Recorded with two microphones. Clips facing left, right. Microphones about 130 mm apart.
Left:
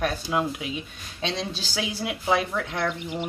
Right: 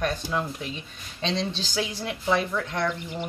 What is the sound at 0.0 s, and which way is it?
Speech, 10° left (ahead or behind).